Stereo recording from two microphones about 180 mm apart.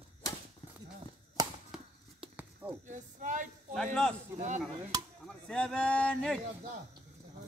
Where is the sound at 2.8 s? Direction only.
45° right (ahead or behind).